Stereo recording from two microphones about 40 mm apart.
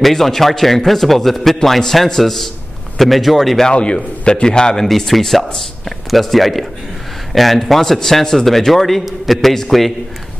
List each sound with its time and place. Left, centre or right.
0.0 s a man's voice: centre
3.7 s a man's voice: left
4.8 s a man's voice: centre